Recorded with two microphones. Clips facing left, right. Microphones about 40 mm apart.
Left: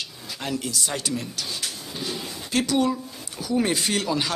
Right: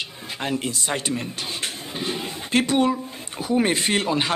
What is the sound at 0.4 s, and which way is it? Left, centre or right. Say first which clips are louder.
Speech: right 2 dB; right.